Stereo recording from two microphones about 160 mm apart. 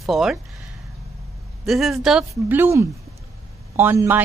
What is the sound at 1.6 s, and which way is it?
A woman's voice, centre (ahead or behind).